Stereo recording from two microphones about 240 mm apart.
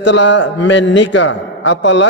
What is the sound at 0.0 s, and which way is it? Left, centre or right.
A man's voice, left.